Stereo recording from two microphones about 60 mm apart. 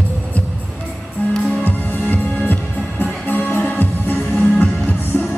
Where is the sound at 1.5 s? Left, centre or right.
Left.